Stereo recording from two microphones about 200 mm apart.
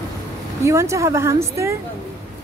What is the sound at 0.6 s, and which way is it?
Speech, 15° right (ahead or behind).